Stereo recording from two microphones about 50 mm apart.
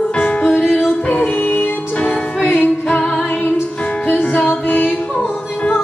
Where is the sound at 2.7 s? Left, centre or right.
Centre.